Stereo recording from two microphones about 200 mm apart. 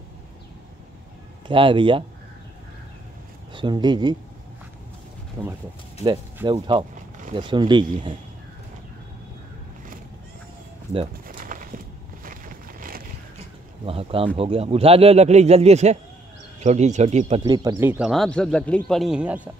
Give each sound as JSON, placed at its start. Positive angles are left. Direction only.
{"t": 1.5, "sound": "a man's voice", "side_deg": -25}
{"t": 3.5, "sound": "a man's voice", "side_deg": -20}
{"t": 5.4, "sound": "speech", "side_deg": -10}
{"t": 6.4, "sound": "a man's voice", "side_deg": -25}
{"t": 11.2, "sound": "a sound", "side_deg": -40}
{"t": 13.8, "sound": "a man's voice", "side_deg": -30}
{"t": 17.6, "sound": "speech", "side_deg": -15}